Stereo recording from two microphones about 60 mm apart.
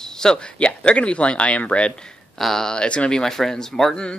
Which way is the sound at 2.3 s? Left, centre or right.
Centre.